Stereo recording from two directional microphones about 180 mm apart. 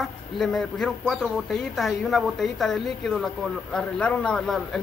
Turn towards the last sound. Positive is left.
turn(degrees=5)  # may be behind; listen again after turning